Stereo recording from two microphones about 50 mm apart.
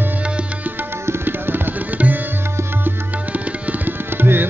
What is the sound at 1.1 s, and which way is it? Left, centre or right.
Tabla, right.